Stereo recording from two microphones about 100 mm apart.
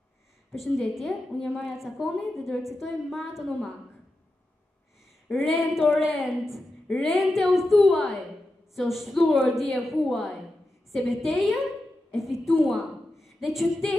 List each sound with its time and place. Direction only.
0.5 s a woman's voice: centre (ahead or behind)
5.3 s a sound: 15° left (ahead or behind)
5.8 s a woman's voice: 5° left (ahead or behind)
9.2 s speech: 20° left (ahead or behind)
9.6 s a woman's voice: centre (ahead or behind)